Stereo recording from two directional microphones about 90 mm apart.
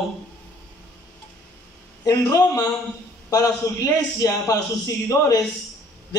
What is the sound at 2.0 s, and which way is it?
A man's voice, 45° left (ahead or behind).